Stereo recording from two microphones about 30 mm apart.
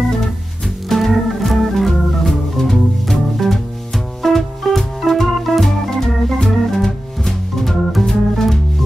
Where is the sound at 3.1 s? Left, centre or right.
Centre.